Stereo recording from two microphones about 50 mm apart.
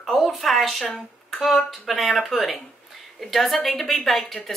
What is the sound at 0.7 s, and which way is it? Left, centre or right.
Speech, centre.